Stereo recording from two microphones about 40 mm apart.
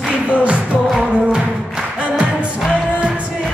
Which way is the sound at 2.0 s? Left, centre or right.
Right.